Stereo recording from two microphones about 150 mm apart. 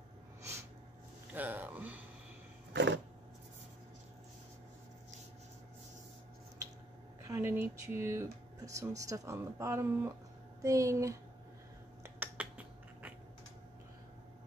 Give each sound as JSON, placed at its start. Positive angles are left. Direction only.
{"t": 0.4, "sound": "a sound", "side_deg": -20}
{"t": 1.3, "sound": "speech", "side_deg": -10}
{"t": 7.2, "sound": "speech", "side_deg": -15}
{"t": 12.0, "sound": "finger snapping", "side_deg": -10}